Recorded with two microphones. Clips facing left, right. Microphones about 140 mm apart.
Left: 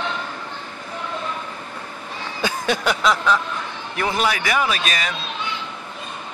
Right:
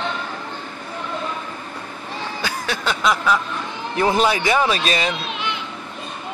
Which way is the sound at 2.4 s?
20° left (ahead or behind).